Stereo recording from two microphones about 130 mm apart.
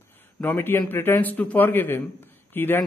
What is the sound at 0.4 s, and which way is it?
A man's voice, 15° left (ahead or behind).